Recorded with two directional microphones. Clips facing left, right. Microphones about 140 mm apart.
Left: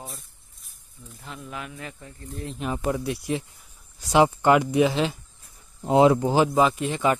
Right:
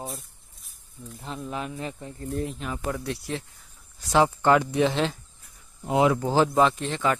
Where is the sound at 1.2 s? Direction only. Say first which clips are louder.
Right 4 dB; 30° right (ahead or behind).